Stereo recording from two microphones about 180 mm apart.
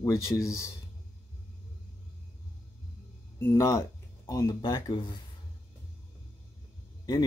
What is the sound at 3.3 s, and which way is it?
Speech, 15° left (ahead or behind).